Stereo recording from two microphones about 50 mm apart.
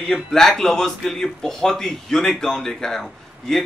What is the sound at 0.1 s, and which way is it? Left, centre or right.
Speech, centre.